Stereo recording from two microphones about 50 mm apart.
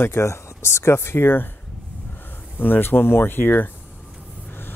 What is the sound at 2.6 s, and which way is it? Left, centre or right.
Speech, left.